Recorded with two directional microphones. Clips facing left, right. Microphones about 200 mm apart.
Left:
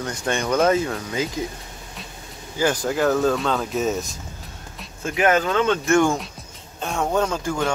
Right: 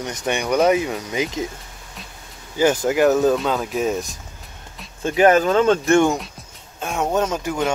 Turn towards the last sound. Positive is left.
turn(degrees=-20)  # may be behind; listen again after turning